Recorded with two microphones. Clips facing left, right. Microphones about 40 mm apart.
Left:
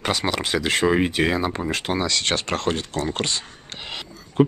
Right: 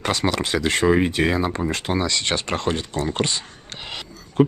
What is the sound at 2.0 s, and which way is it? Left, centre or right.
Speech, centre.